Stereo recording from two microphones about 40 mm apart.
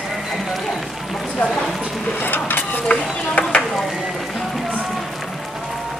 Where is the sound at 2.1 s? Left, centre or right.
Left.